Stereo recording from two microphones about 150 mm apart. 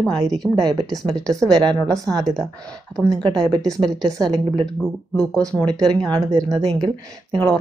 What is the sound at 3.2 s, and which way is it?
A woman's voice, 30° right (ahead or behind).